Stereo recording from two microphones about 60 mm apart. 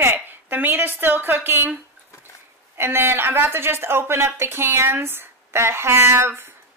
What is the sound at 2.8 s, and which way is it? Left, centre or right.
Speech, right.